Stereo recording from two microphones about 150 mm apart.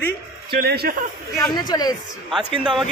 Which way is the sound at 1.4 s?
25° left (ahead or behind).